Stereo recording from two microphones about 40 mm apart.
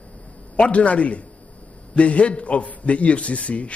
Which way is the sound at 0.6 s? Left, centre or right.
Left.